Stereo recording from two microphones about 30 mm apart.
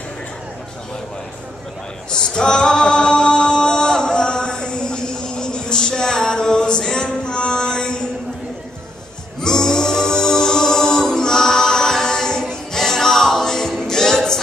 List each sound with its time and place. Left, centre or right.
2.1 s singing: left
7.0 s music: left
9.4 s music: left